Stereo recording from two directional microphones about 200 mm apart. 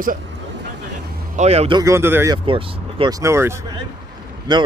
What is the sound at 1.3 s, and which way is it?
Speech, 30° right (ahead or behind).